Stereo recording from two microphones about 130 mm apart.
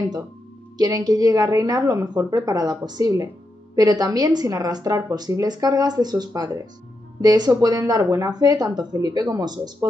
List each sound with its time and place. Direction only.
0.7 s a woman's voice: 30° right (ahead or behind)